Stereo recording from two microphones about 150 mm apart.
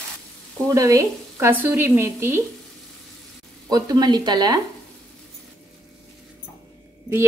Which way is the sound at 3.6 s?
25° right (ahead or behind).